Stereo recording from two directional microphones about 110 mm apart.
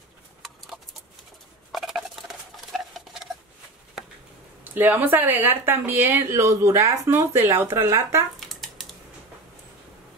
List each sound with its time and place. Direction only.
1.7 s scissors: centre (ahead or behind)
2.7 s a sound: centre (ahead or behind)
4.6 s speech: 20° right (ahead or behind)
8.4 s typing: centre (ahead or behind)